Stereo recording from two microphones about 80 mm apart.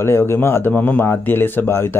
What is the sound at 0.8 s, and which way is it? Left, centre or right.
Speech, left.